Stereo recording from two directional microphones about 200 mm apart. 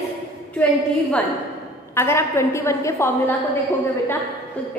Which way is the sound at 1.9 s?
10° left (ahead or behind).